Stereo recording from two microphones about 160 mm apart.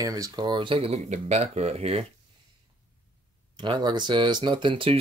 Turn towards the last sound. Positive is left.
turn(degrees=-35)  # may be behind; listen again after turning